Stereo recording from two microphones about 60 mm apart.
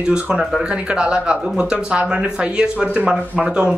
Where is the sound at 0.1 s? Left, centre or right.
Centre.